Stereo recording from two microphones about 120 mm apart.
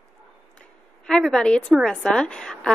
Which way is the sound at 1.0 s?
5° left (ahead or behind).